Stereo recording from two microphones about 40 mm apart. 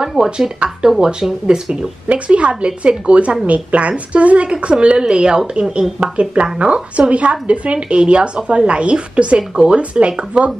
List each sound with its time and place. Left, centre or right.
0.1 s speech: centre
2.0 s a woman's voice: right
6.1 s a woman's voice: right